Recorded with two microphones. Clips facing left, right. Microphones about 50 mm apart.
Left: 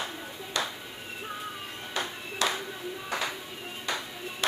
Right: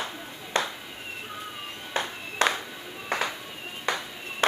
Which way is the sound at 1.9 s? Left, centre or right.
Right.